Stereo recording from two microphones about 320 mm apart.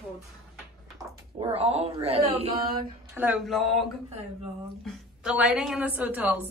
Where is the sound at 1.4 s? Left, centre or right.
Centre.